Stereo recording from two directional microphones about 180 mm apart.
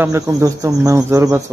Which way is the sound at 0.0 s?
15° right (ahead or behind).